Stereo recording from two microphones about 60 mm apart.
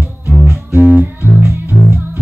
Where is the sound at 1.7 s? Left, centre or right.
Centre.